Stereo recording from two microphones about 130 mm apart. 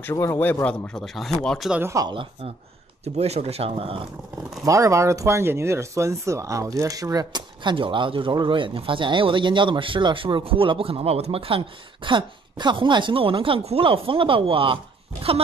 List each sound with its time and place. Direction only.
0.0 s speech: 20° left (ahead or behind); by 1.7 s 5° left (ahead or behind)
1.7 s speech: 20° right (ahead or behind)
2.0 s speech: 40° right (ahead or behind)
3.0 s speech: 55° right (ahead or behind)
4.6 s speech: 25° right (ahead or behind); by 14.8 s 45° right (ahead or behind)